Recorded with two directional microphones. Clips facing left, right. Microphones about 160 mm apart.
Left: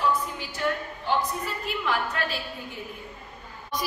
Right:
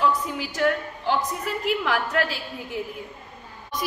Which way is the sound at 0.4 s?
85° right.